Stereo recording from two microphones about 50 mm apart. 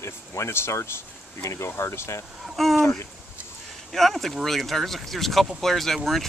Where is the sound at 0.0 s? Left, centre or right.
Left.